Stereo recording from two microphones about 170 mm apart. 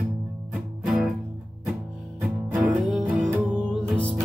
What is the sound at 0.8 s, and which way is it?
Music, 5° right (ahead or behind).